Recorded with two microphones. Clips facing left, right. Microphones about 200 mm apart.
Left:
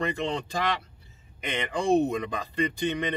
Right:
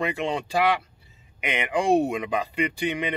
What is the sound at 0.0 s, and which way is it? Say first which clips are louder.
Speech: right 2 dB; 10° right (ahead or behind).